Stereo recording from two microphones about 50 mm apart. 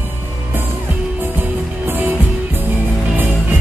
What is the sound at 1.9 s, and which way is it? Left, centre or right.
Music, right.